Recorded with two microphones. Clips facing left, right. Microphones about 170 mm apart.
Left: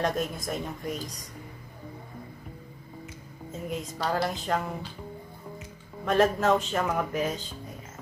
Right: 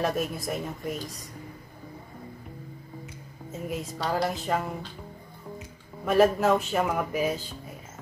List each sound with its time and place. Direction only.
0.0 s a woman's voice: 5° right (ahead or behind)
3.6 s a woman's voice: 5° right (ahead or behind)
6.0 s speech: 5° right (ahead or behind)